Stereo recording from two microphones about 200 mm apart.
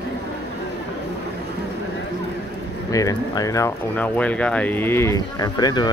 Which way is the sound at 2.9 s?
15° left (ahead or behind).